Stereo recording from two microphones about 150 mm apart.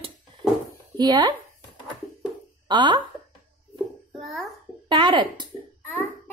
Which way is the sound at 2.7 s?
30° right (ahead or behind).